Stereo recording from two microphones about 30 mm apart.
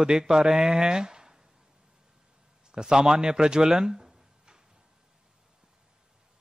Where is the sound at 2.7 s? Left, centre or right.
Right.